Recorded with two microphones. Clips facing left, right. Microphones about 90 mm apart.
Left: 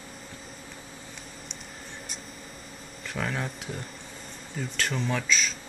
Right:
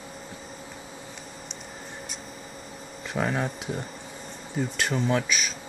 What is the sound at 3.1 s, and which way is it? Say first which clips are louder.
Speech: right 5 dB; 10° right (ahead or behind).